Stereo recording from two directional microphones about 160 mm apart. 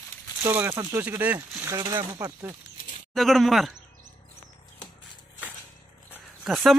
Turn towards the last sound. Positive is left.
turn(degrees=0)  # may be behind; listen again after turning